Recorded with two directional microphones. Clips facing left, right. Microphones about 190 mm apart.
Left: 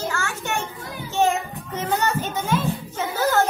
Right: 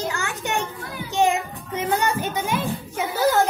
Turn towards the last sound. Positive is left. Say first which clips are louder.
# right 1 dB
turn(degrees=-10)  # may be behind; listen again after turning